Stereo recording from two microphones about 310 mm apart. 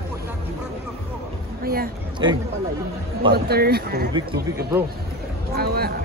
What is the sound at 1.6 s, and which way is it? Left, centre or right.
Speech, right.